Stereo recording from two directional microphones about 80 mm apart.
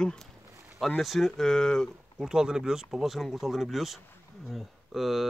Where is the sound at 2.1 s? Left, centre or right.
Centre.